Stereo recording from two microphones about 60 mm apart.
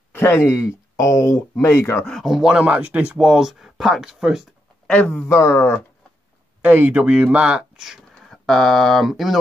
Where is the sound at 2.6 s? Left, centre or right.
Right.